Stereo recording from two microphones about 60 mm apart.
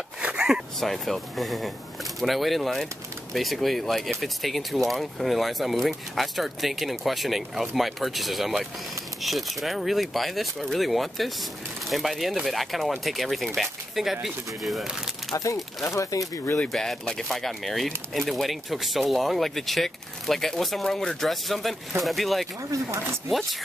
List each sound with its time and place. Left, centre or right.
0.2 s zipper: centre
0.7 s speech: centre
15.3 s speech: left
15.8 s speech: left
16.6 s speech: centre
22.8 s speech: right